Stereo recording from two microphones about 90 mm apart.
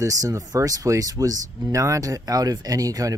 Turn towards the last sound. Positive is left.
turn(degrees=-40)  # may be behind; listen again after turning